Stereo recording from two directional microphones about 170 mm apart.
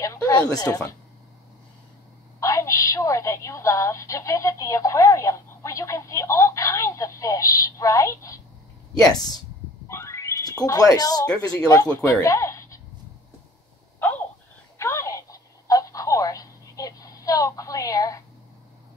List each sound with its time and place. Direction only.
0.0 s a sound: 20° left (ahead or behind)
2.4 s a woman's voice: 20° left (ahead or behind)
14.8 s telephone: 15° left (ahead or behind)